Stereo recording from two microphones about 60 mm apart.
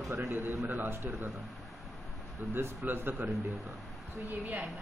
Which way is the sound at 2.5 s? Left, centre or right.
Right.